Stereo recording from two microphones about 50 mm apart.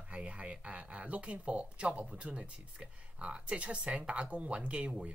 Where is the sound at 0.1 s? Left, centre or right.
Right.